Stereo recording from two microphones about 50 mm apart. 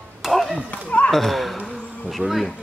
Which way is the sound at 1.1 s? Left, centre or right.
Centre.